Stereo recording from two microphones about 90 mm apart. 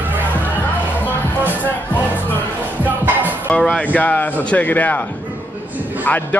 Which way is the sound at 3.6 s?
15° left (ahead or behind).